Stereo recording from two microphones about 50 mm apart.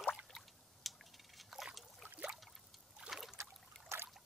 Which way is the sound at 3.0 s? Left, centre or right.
Centre.